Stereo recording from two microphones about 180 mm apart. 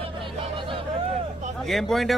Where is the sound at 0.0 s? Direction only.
30° right (ahead or behind).